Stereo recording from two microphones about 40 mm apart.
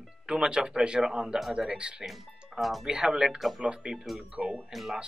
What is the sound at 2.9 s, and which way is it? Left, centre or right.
Speech, centre.